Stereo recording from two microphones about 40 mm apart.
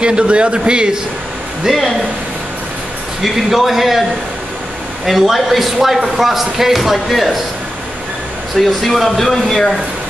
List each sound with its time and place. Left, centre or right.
0.0 s speech: right
1.7 s speech: centre
3.2 s speech: centre
5.0 s speech: centre
8.5 s speech: centre